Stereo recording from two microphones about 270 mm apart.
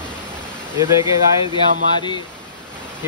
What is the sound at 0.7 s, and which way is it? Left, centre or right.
Speech, centre.